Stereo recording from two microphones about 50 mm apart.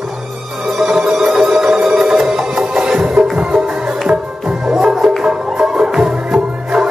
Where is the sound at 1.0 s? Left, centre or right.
Centre.